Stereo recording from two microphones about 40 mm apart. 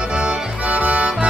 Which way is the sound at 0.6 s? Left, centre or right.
Right.